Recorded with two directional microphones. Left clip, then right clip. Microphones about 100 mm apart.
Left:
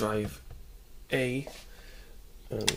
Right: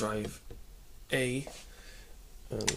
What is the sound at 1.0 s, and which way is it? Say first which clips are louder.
Speech: left 2 dB; 15° left (ahead or behind).